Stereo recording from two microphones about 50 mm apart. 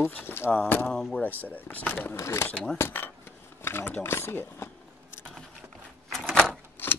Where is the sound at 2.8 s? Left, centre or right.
Left.